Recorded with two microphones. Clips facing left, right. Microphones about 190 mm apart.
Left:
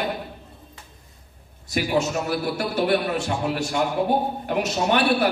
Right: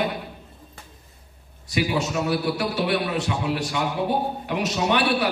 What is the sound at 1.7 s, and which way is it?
A man's voice, 45° left (ahead or behind).